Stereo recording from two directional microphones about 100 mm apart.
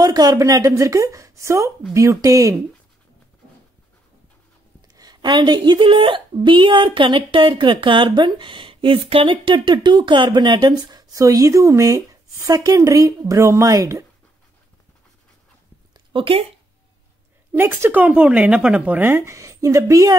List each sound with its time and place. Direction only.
0.0 s speech: 40° right (ahead or behind)
4.8 s a woman's voice: 40° right (ahead or behind)
15.9 s a sound: 55° right (ahead or behind)
17.5 s a woman's voice: 20° right (ahead or behind)